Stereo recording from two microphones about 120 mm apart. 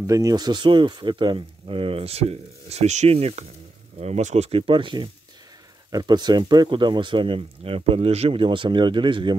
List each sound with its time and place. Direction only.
0.0 s speech: 25° right (ahead or behind); by 3.4 s 60° right (ahead or behind)
4.0 s speech: 75° right (ahead or behind)
4.5 s speech: 50° right (ahead or behind)